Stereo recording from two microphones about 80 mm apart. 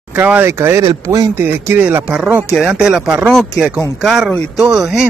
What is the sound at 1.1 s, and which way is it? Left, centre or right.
Speech, right.